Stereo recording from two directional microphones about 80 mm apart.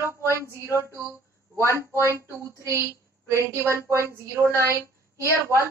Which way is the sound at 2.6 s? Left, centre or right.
Right.